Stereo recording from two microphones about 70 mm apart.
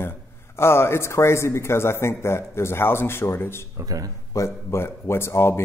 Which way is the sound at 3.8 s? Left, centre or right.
Right.